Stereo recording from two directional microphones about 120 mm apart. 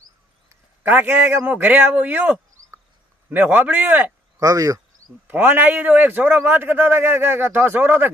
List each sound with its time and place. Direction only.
0.8 s a man's voice: 15° right (ahead or behind)
4.4 s speech: 25° right (ahead or behind)
5.3 s a man's voice: 15° right (ahead or behind)